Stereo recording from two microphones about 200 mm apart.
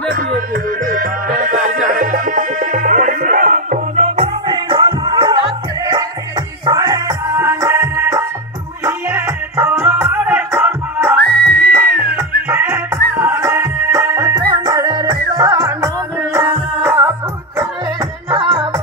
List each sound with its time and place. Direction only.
0.8 s music: 45° right (ahead or behind); by 5.4 s 25° right (ahead or behind)
6.6 s music: 20° right (ahead or behind)
11.2 s music: 5° left (ahead or behind)
11.7 s music: 10° right (ahead or behind)
18.3 s music: 20° right (ahead or behind)